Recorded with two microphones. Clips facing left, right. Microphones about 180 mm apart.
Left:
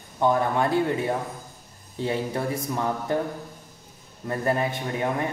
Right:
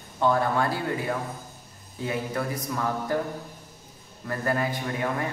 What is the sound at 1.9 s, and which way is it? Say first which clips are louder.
A man's voice: left 2 dB; 30° left (ahead or behind).